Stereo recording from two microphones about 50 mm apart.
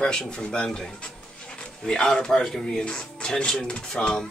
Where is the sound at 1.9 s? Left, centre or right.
Centre.